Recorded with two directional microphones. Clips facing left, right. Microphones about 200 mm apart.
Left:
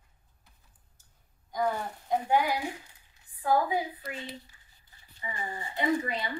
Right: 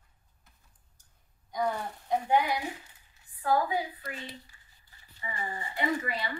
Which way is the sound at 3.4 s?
20° left (ahead or behind).